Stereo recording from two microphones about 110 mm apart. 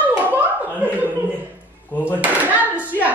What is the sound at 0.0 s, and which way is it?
Hands, 15° right (ahead or behind).